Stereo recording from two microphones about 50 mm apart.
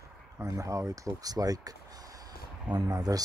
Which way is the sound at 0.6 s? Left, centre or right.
Right.